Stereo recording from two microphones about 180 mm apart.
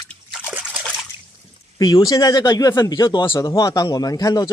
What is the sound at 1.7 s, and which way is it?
Speech, 20° left (ahead or behind).